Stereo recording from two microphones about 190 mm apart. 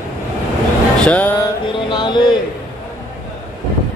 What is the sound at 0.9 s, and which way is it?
Music, 5° left (ahead or behind).